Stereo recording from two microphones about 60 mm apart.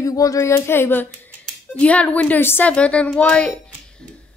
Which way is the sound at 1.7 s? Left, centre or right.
Left.